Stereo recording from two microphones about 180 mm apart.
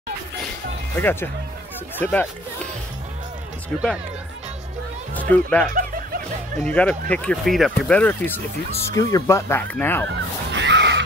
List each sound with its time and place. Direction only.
0.9 s speech: 10° left (ahead or behind)
3.7 s speech: 5° left (ahead or behind)
5.3 s speech: 10° left (ahead or behind)
8.9 s speech: 20° left (ahead or behind)
10.5 s a sound: 85° right